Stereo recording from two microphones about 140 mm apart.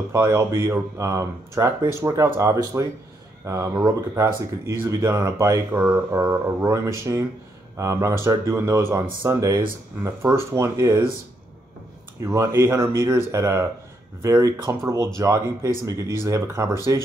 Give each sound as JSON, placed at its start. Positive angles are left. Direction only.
{"t": 0.1, "sound": "speech", "side_deg": -20}
{"t": 5.8, "sound": "speech", "side_deg": -10}
{"t": 12.2, "sound": "speech", "side_deg": -20}